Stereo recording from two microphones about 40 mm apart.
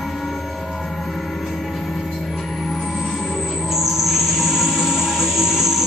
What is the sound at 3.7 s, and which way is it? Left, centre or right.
Music, centre.